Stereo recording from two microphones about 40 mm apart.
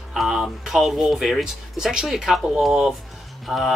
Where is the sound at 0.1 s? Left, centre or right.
Centre.